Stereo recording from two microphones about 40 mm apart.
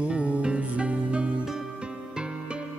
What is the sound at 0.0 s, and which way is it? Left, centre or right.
Music, right.